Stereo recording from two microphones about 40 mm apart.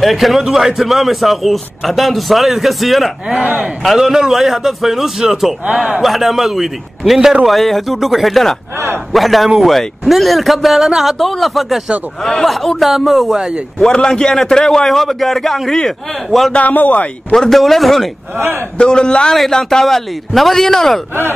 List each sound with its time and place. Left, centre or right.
0.0 s a man's voice: centre
3.3 s speech: right
4.0 s a man's voice: centre
13.9 s speech: centre
14.9 s a man's voice: centre
16.5 s speech: left
17.4 s a man's voice: centre
18.8 s a man's voice: left
19.3 s a man's voice: centre